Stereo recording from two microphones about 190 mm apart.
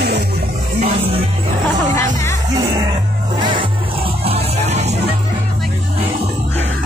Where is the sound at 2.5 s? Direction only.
15° right (ahead or behind); by 5.0 s 35° right (ahead or behind).